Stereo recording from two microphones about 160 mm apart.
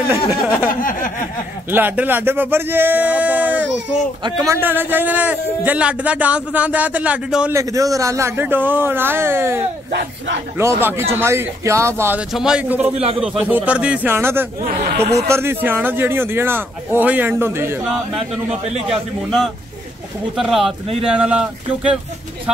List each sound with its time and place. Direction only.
0.7 s a sound: 55° left (ahead or behind)
1.7 s a man's voice: 10° right (ahead or behind)
4.2 s speech: 25° right (ahead or behind)
4.6 s a man's voice: 10° right (ahead or behind)
7.5 s a man's voice: 20° right (ahead or behind)
12.3 s a man's voice: 5° right (ahead or behind)
12.9 s speech: 40° right (ahead or behind)
13.2 s a man's voice: 5° right (ahead or behind)
18.9 s speech: centre (ahead or behind)